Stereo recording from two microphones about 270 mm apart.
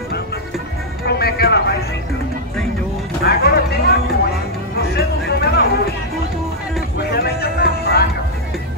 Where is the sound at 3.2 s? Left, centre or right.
Left.